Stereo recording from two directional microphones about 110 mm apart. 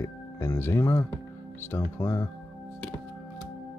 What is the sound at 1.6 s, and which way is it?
Speech, 20° left (ahead or behind).